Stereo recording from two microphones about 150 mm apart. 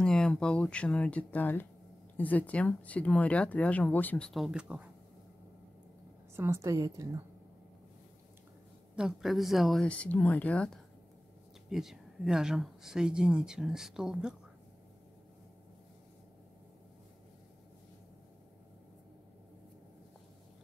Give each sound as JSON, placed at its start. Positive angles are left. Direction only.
{"t": 0.0, "sound": "speech", "side_deg": 5}
{"t": 4.3, "sound": "speech", "side_deg": -5}
{"t": 6.3, "sound": "a woman's voice", "side_deg": -15}
{"t": 8.9, "sound": "speech", "side_deg": -5}